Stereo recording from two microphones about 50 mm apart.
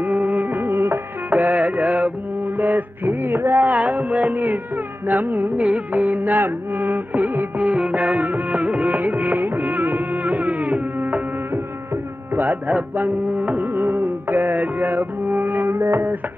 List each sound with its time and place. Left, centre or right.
0.0 s music: right
1.3 s music: right
3.6 s music: right
12.4 s carnatic music: right
15.7 s music: right